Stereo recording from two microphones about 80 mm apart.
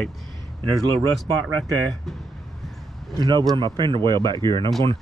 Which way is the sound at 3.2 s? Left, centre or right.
Right.